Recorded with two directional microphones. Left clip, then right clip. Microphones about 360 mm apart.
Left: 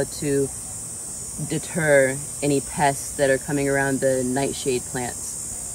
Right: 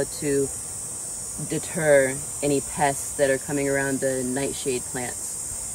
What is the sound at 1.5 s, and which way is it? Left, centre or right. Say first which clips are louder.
Speech: even; centre.